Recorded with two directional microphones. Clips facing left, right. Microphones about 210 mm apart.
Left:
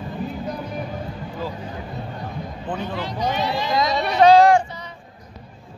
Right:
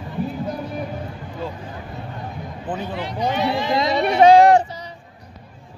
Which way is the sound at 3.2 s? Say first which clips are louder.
Right 3 dB; 30° right (ahead or behind).